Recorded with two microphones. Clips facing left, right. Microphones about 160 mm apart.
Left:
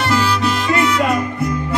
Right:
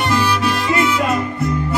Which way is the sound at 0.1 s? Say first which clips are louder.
Left 1 dB; 15° right (ahead or behind).